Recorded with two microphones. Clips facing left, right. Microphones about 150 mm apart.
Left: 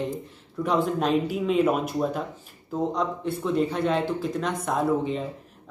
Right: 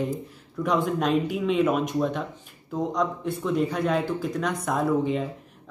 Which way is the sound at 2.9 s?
30° left (ahead or behind).